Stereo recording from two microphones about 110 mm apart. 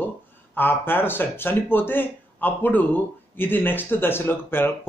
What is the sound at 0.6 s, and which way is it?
Speech, 20° left (ahead or behind).